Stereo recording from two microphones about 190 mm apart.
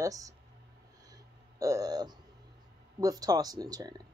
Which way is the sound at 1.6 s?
20° right (ahead or behind).